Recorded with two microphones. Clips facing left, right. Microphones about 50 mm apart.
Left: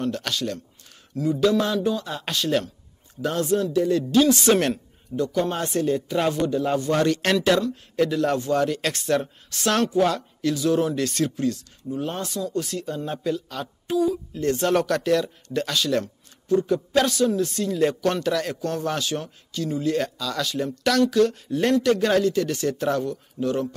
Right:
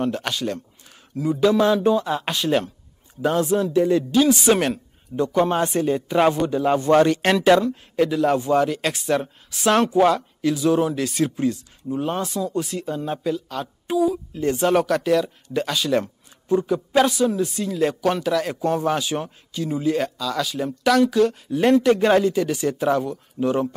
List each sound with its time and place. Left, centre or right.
0.0 s speech: centre
3.7 s speech: right
4.3 s speech: centre
5.1 s speech: right
7.9 s speech: centre
18.6 s speech: centre